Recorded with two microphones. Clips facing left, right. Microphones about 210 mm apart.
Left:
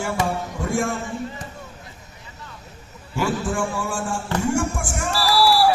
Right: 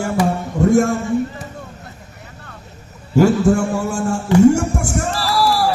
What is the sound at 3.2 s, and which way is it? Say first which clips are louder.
Speech: right 10 dB; 40° right (ahead or behind).